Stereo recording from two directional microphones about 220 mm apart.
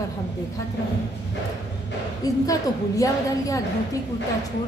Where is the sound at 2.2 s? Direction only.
15° left (ahead or behind).